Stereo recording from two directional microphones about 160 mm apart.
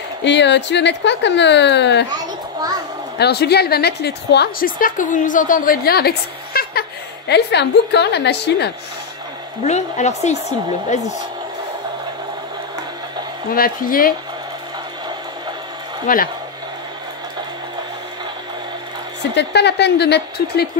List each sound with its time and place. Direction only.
0.2 s a woman's voice: 90° left
3.2 s a woman's voice: 90° left
9.6 s a woman's voice: 45° left (ahead or behind)
13.5 s speech: 65° left (ahead or behind)
16.1 s speech: 55° left (ahead or behind)
19.3 s a woman's voice: 90° left